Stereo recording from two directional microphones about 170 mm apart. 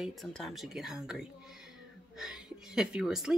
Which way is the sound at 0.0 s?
Centre (ahead or behind).